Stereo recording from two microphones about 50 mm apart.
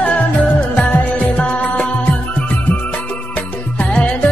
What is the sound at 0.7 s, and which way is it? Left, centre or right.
Music, left.